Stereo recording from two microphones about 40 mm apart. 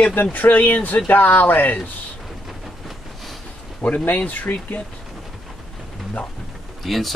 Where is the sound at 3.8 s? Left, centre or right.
Left.